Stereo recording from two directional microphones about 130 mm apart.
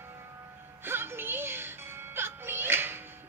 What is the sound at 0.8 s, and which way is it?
Music, 15° right (ahead or behind).